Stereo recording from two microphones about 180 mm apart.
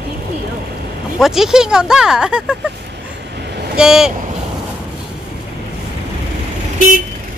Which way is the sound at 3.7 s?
5° right (ahead or behind).